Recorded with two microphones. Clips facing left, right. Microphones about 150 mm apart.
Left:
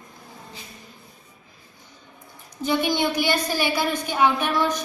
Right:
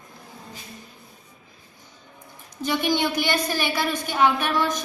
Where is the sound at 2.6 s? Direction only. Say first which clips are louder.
Left 1 dB; 10° left (ahead or behind).